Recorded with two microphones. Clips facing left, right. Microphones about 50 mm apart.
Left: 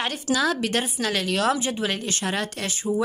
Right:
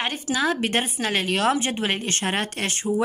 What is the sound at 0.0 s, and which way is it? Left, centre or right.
A woman's voice, right.